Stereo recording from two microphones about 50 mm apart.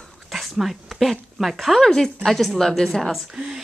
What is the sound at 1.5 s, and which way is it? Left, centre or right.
A woman's voice, centre.